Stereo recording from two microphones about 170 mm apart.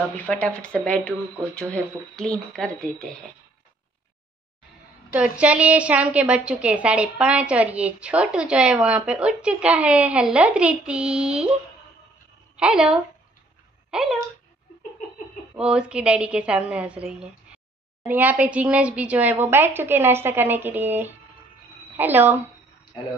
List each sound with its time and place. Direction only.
0.1 s speech: 10° left (ahead or behind)
5.4 s a woman's voice: 5° right (ahead or behind)
12.5 s speech: 5° right (ahead or behind)
15.5 s a woman's voice: 5° right (ahead or behind)
22.9 s speech: 25° left (ahead or behind)